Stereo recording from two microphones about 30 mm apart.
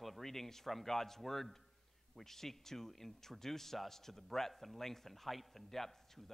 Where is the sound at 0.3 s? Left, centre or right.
Centre.